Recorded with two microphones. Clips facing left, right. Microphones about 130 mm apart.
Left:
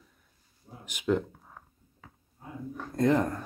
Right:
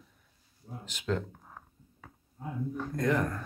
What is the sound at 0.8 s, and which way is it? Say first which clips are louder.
Speech: left 5 dB; 15° left (ahead or behind).